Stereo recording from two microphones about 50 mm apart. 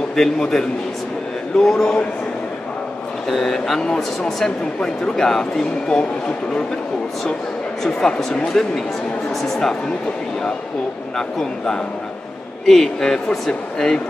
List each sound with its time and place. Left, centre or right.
0.1 s speech: centre
3.3 s speech: centre
3.8 s speech: centre
7.8 s speech: centre
11.1 s speech: centre